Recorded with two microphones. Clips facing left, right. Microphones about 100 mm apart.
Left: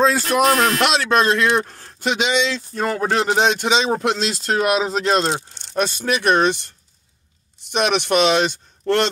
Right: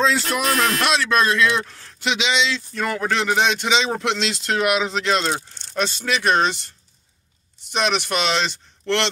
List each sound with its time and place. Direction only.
0.2 s speech: centre (ahead or behind)
0.8 s speech: 60° left (ahead or behind)
2.7 s speech: 40° left (ahead or behind)
5.8 s speech: 55° left (ahead or behind)
7.7 s speech: 60° left (ahead or behind)